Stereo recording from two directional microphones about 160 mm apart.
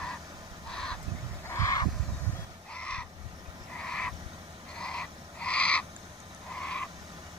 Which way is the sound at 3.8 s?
5° left (ahead or behind).